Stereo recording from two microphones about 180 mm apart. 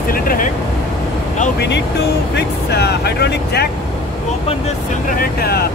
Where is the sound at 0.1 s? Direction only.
55° left (ahead or behind).